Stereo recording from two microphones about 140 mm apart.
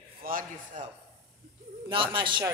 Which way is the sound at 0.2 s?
75° right (ahead or behind).